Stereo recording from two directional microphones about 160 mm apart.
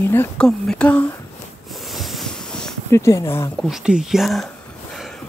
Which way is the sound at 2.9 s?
20° left (ahead or behind).